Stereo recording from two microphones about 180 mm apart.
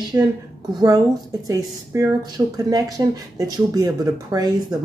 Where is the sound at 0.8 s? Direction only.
20° right (ahead or behind).